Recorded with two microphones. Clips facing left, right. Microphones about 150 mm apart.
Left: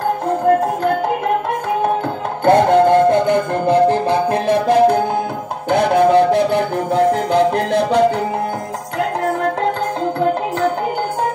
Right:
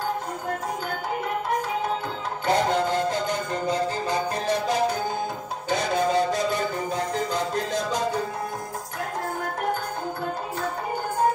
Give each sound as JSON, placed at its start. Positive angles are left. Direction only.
{"t": 2.4, "sound": "music", "side_deg": 60}
{"t": 9.4, "sound": "music", "side_deg": 75}